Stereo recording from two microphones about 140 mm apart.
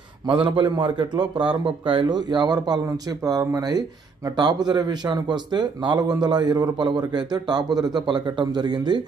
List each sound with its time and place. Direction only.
0.3 s speech: 35° right (ahead or behind)